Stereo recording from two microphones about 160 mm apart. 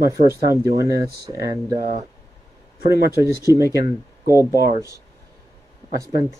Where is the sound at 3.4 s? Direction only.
20° right (ahead or behind).